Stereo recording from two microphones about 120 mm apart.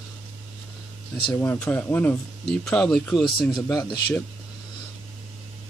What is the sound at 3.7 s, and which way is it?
Speech, 30° left (ahead or behind).